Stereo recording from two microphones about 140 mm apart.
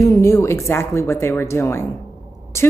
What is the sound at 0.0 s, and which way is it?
A woman's voice, 25° left (ahead or behind).